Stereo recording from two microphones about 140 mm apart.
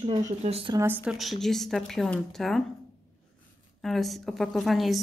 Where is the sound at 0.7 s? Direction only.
20° right (ahead or behind).